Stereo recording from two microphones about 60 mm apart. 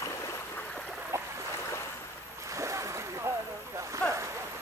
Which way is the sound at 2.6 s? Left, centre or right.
Right.